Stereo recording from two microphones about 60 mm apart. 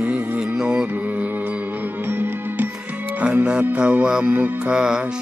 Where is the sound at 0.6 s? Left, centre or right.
Centre.